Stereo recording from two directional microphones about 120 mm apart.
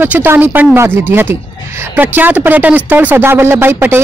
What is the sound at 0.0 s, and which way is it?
A woman's voice, 15° right (ahead or behind).